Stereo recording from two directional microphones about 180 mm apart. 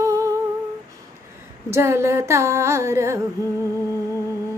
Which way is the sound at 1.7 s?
15° right (ahead or behind).